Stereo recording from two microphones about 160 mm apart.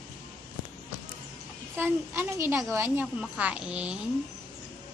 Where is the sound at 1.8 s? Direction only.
15° right (ahead or behind).